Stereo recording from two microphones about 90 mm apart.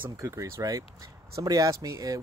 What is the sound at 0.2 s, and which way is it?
Speech, 35° right (ahead or behind).